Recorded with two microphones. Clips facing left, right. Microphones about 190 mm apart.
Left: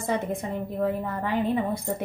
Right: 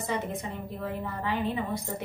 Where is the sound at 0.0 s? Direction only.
50° left (ahead or behind).